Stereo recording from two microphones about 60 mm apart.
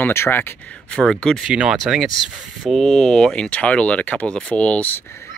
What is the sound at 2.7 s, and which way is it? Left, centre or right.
Speech, centre.